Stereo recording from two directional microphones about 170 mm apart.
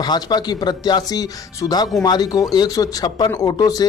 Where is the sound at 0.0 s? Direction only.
25° left (ahead or behind).